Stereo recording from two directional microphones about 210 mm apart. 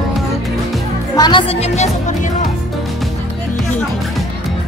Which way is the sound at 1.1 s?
20° left (ahead or behind).